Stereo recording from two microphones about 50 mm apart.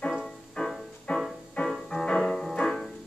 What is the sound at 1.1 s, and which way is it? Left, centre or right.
Music, left.